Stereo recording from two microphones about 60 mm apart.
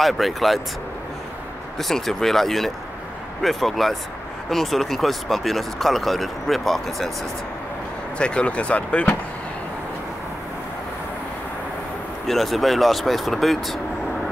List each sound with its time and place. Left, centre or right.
0.0 s speech: centre
1.8 s speech: centre
8.2 s speech: centre
12.3 s speech: centre